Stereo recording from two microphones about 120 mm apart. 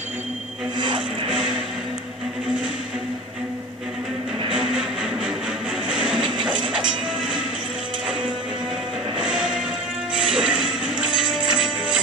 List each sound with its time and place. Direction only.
0.7 s music: 40° right (ahead or behind)
1.3 s music: 5° right (ahead or behind)
4.5 s a sound: 5° right (ahead or behind)
5.9 s music: 10° right (ahead or behind)
9.2 s music: 5° right (ahead or behind)